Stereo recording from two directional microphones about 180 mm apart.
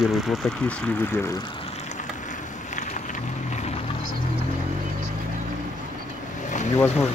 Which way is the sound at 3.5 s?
40° left (ahead or behind).